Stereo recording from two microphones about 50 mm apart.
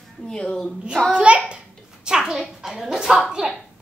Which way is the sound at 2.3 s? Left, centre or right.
Centre.